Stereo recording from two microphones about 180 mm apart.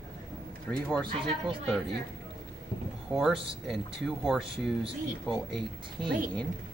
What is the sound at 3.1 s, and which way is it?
A man's voice, centre (ahead or behind).